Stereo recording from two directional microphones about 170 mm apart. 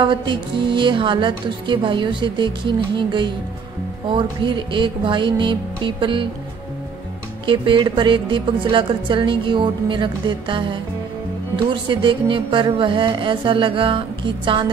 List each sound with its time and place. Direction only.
0.0 s speech: 30° right (ahead or behind)
7.4 s speech: 30° right (ahead or behind)
11.7 s speech: 30° right (ahead or behind)